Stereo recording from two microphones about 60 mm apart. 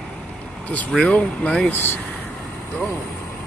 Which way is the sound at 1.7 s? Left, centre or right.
Left.